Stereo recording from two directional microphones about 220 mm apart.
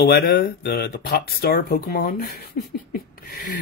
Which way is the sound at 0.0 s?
45° left (ahead or behind).